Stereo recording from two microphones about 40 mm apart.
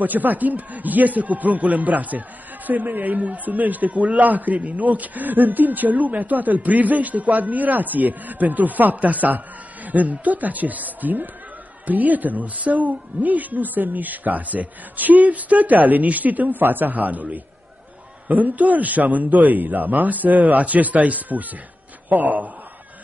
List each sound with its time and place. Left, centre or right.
0.0 s a man's voice: right